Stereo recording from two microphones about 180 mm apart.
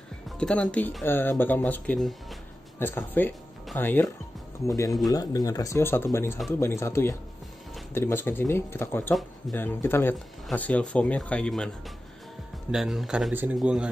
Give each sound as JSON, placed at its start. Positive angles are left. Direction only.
{"t": 0.4, "sound": "speech", "side_deg": 5}
{"t": 12.7, "sound": "speech", "side_deg": 0}